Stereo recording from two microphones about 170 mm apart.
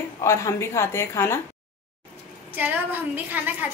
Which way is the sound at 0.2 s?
15° left (ahead or behind).